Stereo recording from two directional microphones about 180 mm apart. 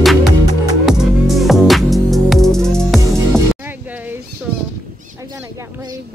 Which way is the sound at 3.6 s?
10° right (ahead or behind).